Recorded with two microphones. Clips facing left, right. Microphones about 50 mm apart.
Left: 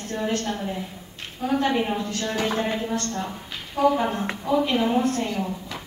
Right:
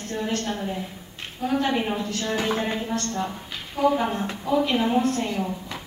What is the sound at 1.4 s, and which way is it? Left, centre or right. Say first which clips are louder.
Speech: left 1 dB; centre.